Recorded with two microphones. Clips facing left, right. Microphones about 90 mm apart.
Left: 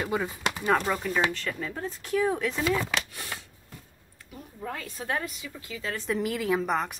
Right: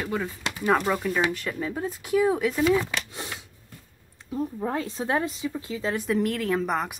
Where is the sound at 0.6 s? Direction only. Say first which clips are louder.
Right 3 dB; 5° right (ahead or behind).